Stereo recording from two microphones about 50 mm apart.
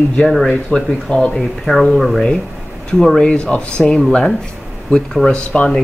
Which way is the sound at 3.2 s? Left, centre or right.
Centre.